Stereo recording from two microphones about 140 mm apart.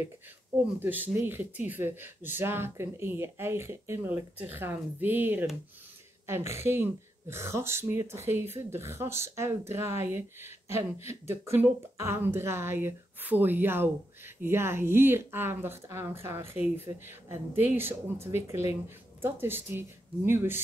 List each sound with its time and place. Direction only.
0.7 s speech: 15° right (ahead or behind)